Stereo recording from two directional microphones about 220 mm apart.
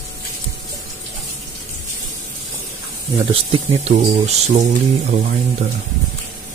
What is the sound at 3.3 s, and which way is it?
Speech, 25° right (ahead or behind).